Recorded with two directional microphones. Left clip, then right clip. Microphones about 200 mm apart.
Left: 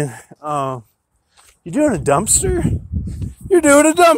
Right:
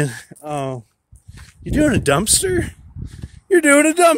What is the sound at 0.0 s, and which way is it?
Speech, 20° right (ahead or behind).